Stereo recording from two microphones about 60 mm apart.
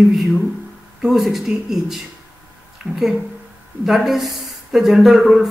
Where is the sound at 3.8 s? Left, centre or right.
Centre.